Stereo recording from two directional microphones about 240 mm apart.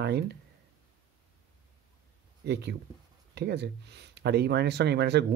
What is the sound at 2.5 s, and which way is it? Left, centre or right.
Speech, right.